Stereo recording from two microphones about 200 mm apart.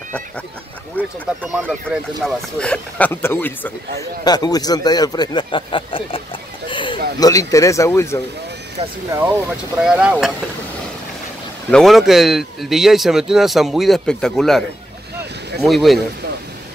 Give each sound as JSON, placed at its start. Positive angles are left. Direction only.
{"t": 1.0, "sound": "speech", "side_deg": 5}
{"t": 1.4, "sound": "speech", "side_deg": -10}
{"t": 2.2, "sound": "speech", "side_deg": 5}
{"t": 4.2, "sound": "speech", "side_deg": 20}
{"t": 6.7, "sound": "a sound", "side_deg": 25}
{"t": 7.2, "sound": "speech", "side_deg": 15}
{"t": 9.1, "sound": "speech", "side_deg": -10}
{"t": 11.7, "sound": "speech", "side_deg": 0}
{"t": 15.6, "sound": "speech", "side_deg": 0}